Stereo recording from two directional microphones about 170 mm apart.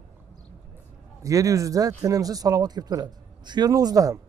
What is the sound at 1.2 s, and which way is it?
A man's voice, 20° right (ahead or behind).